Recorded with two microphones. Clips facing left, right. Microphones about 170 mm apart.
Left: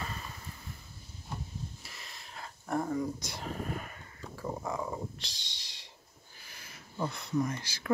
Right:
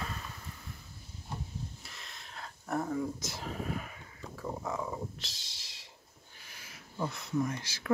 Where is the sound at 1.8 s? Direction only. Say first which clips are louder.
Even; centre (ahead or behind).